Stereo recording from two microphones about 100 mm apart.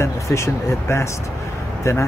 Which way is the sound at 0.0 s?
25° left (ahead or behind).